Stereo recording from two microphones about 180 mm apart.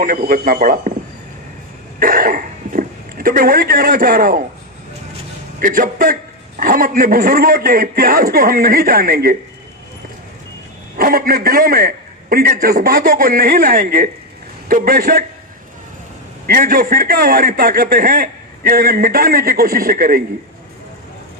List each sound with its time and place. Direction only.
0.0 s a man's voice: 50° right (ahead or behind)
2.0 s speech: 50° right (ahead or behind)
5.6 s a man's voice: 45° right (ahead or behind)
11.0 s a man's voice: 55° right (ahead or behind)
16.4 s a man's voice: 50° right (ahead or behind)